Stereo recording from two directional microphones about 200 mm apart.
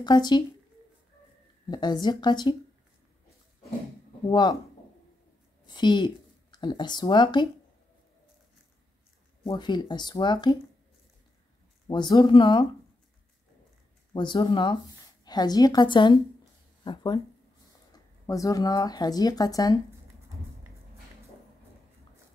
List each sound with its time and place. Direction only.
0.0 s speech: 20° left (ahead or behind)
1.7 s speech: 20° left (ahead or behind)
4.3 s speech: 20° left (ahead or behind)
5.7 s speech: 20° left (ahead or behind)
9.4 s speech: 20° left (ahead or behind)
11.9 s speech: 20° left (ahead or behind)
14.1 s speech: 25° left (ahead or behind)
18.2 s speech: 15° left (ahead or behind)